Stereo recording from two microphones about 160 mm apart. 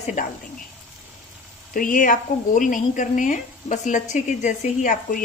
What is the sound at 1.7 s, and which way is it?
A woman's voice, 60° left (ahead or behind).